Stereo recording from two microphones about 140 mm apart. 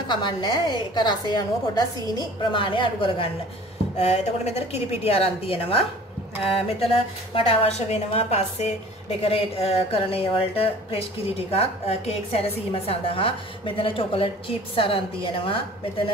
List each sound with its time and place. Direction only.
0.1 s a woman's voice: 35° left (ahead or behind)
4.0 s a woman's voice: 50° left (ahead or behind)